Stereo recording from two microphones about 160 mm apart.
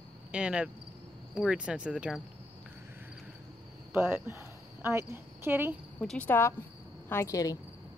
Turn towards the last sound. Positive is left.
turn(degrees=20)  # may be behind; listen again after turning